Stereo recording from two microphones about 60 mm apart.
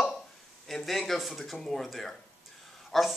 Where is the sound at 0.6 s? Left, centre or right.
Centre.